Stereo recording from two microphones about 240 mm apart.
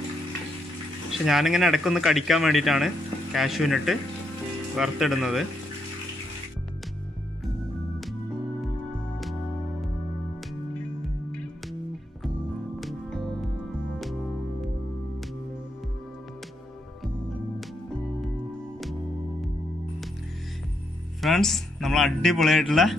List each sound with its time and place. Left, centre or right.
1.1 s speech: centre
12.8 s music: centre
21.2 s speech: centre